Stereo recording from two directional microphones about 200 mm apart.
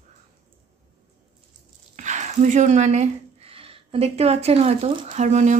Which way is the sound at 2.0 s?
35° right (ahead or behind).